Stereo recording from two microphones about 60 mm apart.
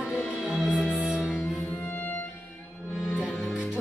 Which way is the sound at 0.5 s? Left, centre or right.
Centre.